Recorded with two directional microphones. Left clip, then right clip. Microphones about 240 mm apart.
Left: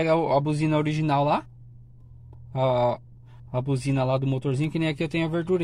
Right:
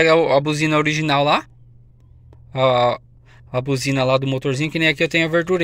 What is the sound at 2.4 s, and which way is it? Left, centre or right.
Speech, centre.